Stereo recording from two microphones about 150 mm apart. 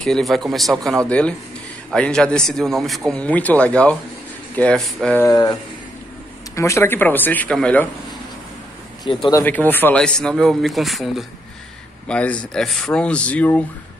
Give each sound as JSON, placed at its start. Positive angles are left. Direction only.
{"t": 0.0, "sound": "speech", "side_deg": 0}
{"t": 5.2, "sound": "speech", "side_deg": 25}
{"t": 9.1, "sound": "speech", "side_deg": 35}
{"t": 9.4, "sound": "speech", "side_deg": 10}